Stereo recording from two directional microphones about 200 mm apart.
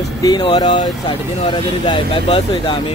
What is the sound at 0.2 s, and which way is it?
Speech, 20° left (ahead or behind).